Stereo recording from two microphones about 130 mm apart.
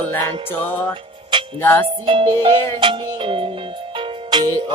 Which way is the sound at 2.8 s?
40° right (ahead or behind).